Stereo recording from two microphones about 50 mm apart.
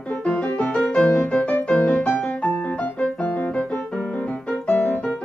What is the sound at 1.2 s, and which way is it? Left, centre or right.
Piano, left.